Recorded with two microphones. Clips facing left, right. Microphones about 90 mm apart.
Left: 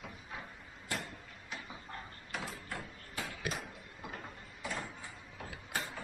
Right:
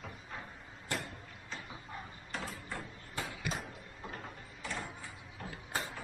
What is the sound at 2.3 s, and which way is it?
Mechanisms, centre (ahead or behind).